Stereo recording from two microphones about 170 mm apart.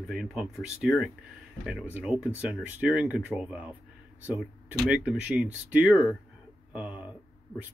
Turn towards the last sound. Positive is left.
turn(degrees=-10)  # may be behind; listen again after turning